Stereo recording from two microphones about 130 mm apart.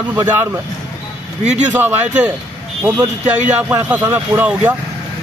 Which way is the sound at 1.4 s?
65° right (ahead or behind).